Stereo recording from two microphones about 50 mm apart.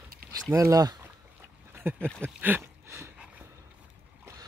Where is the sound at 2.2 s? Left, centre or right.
Right.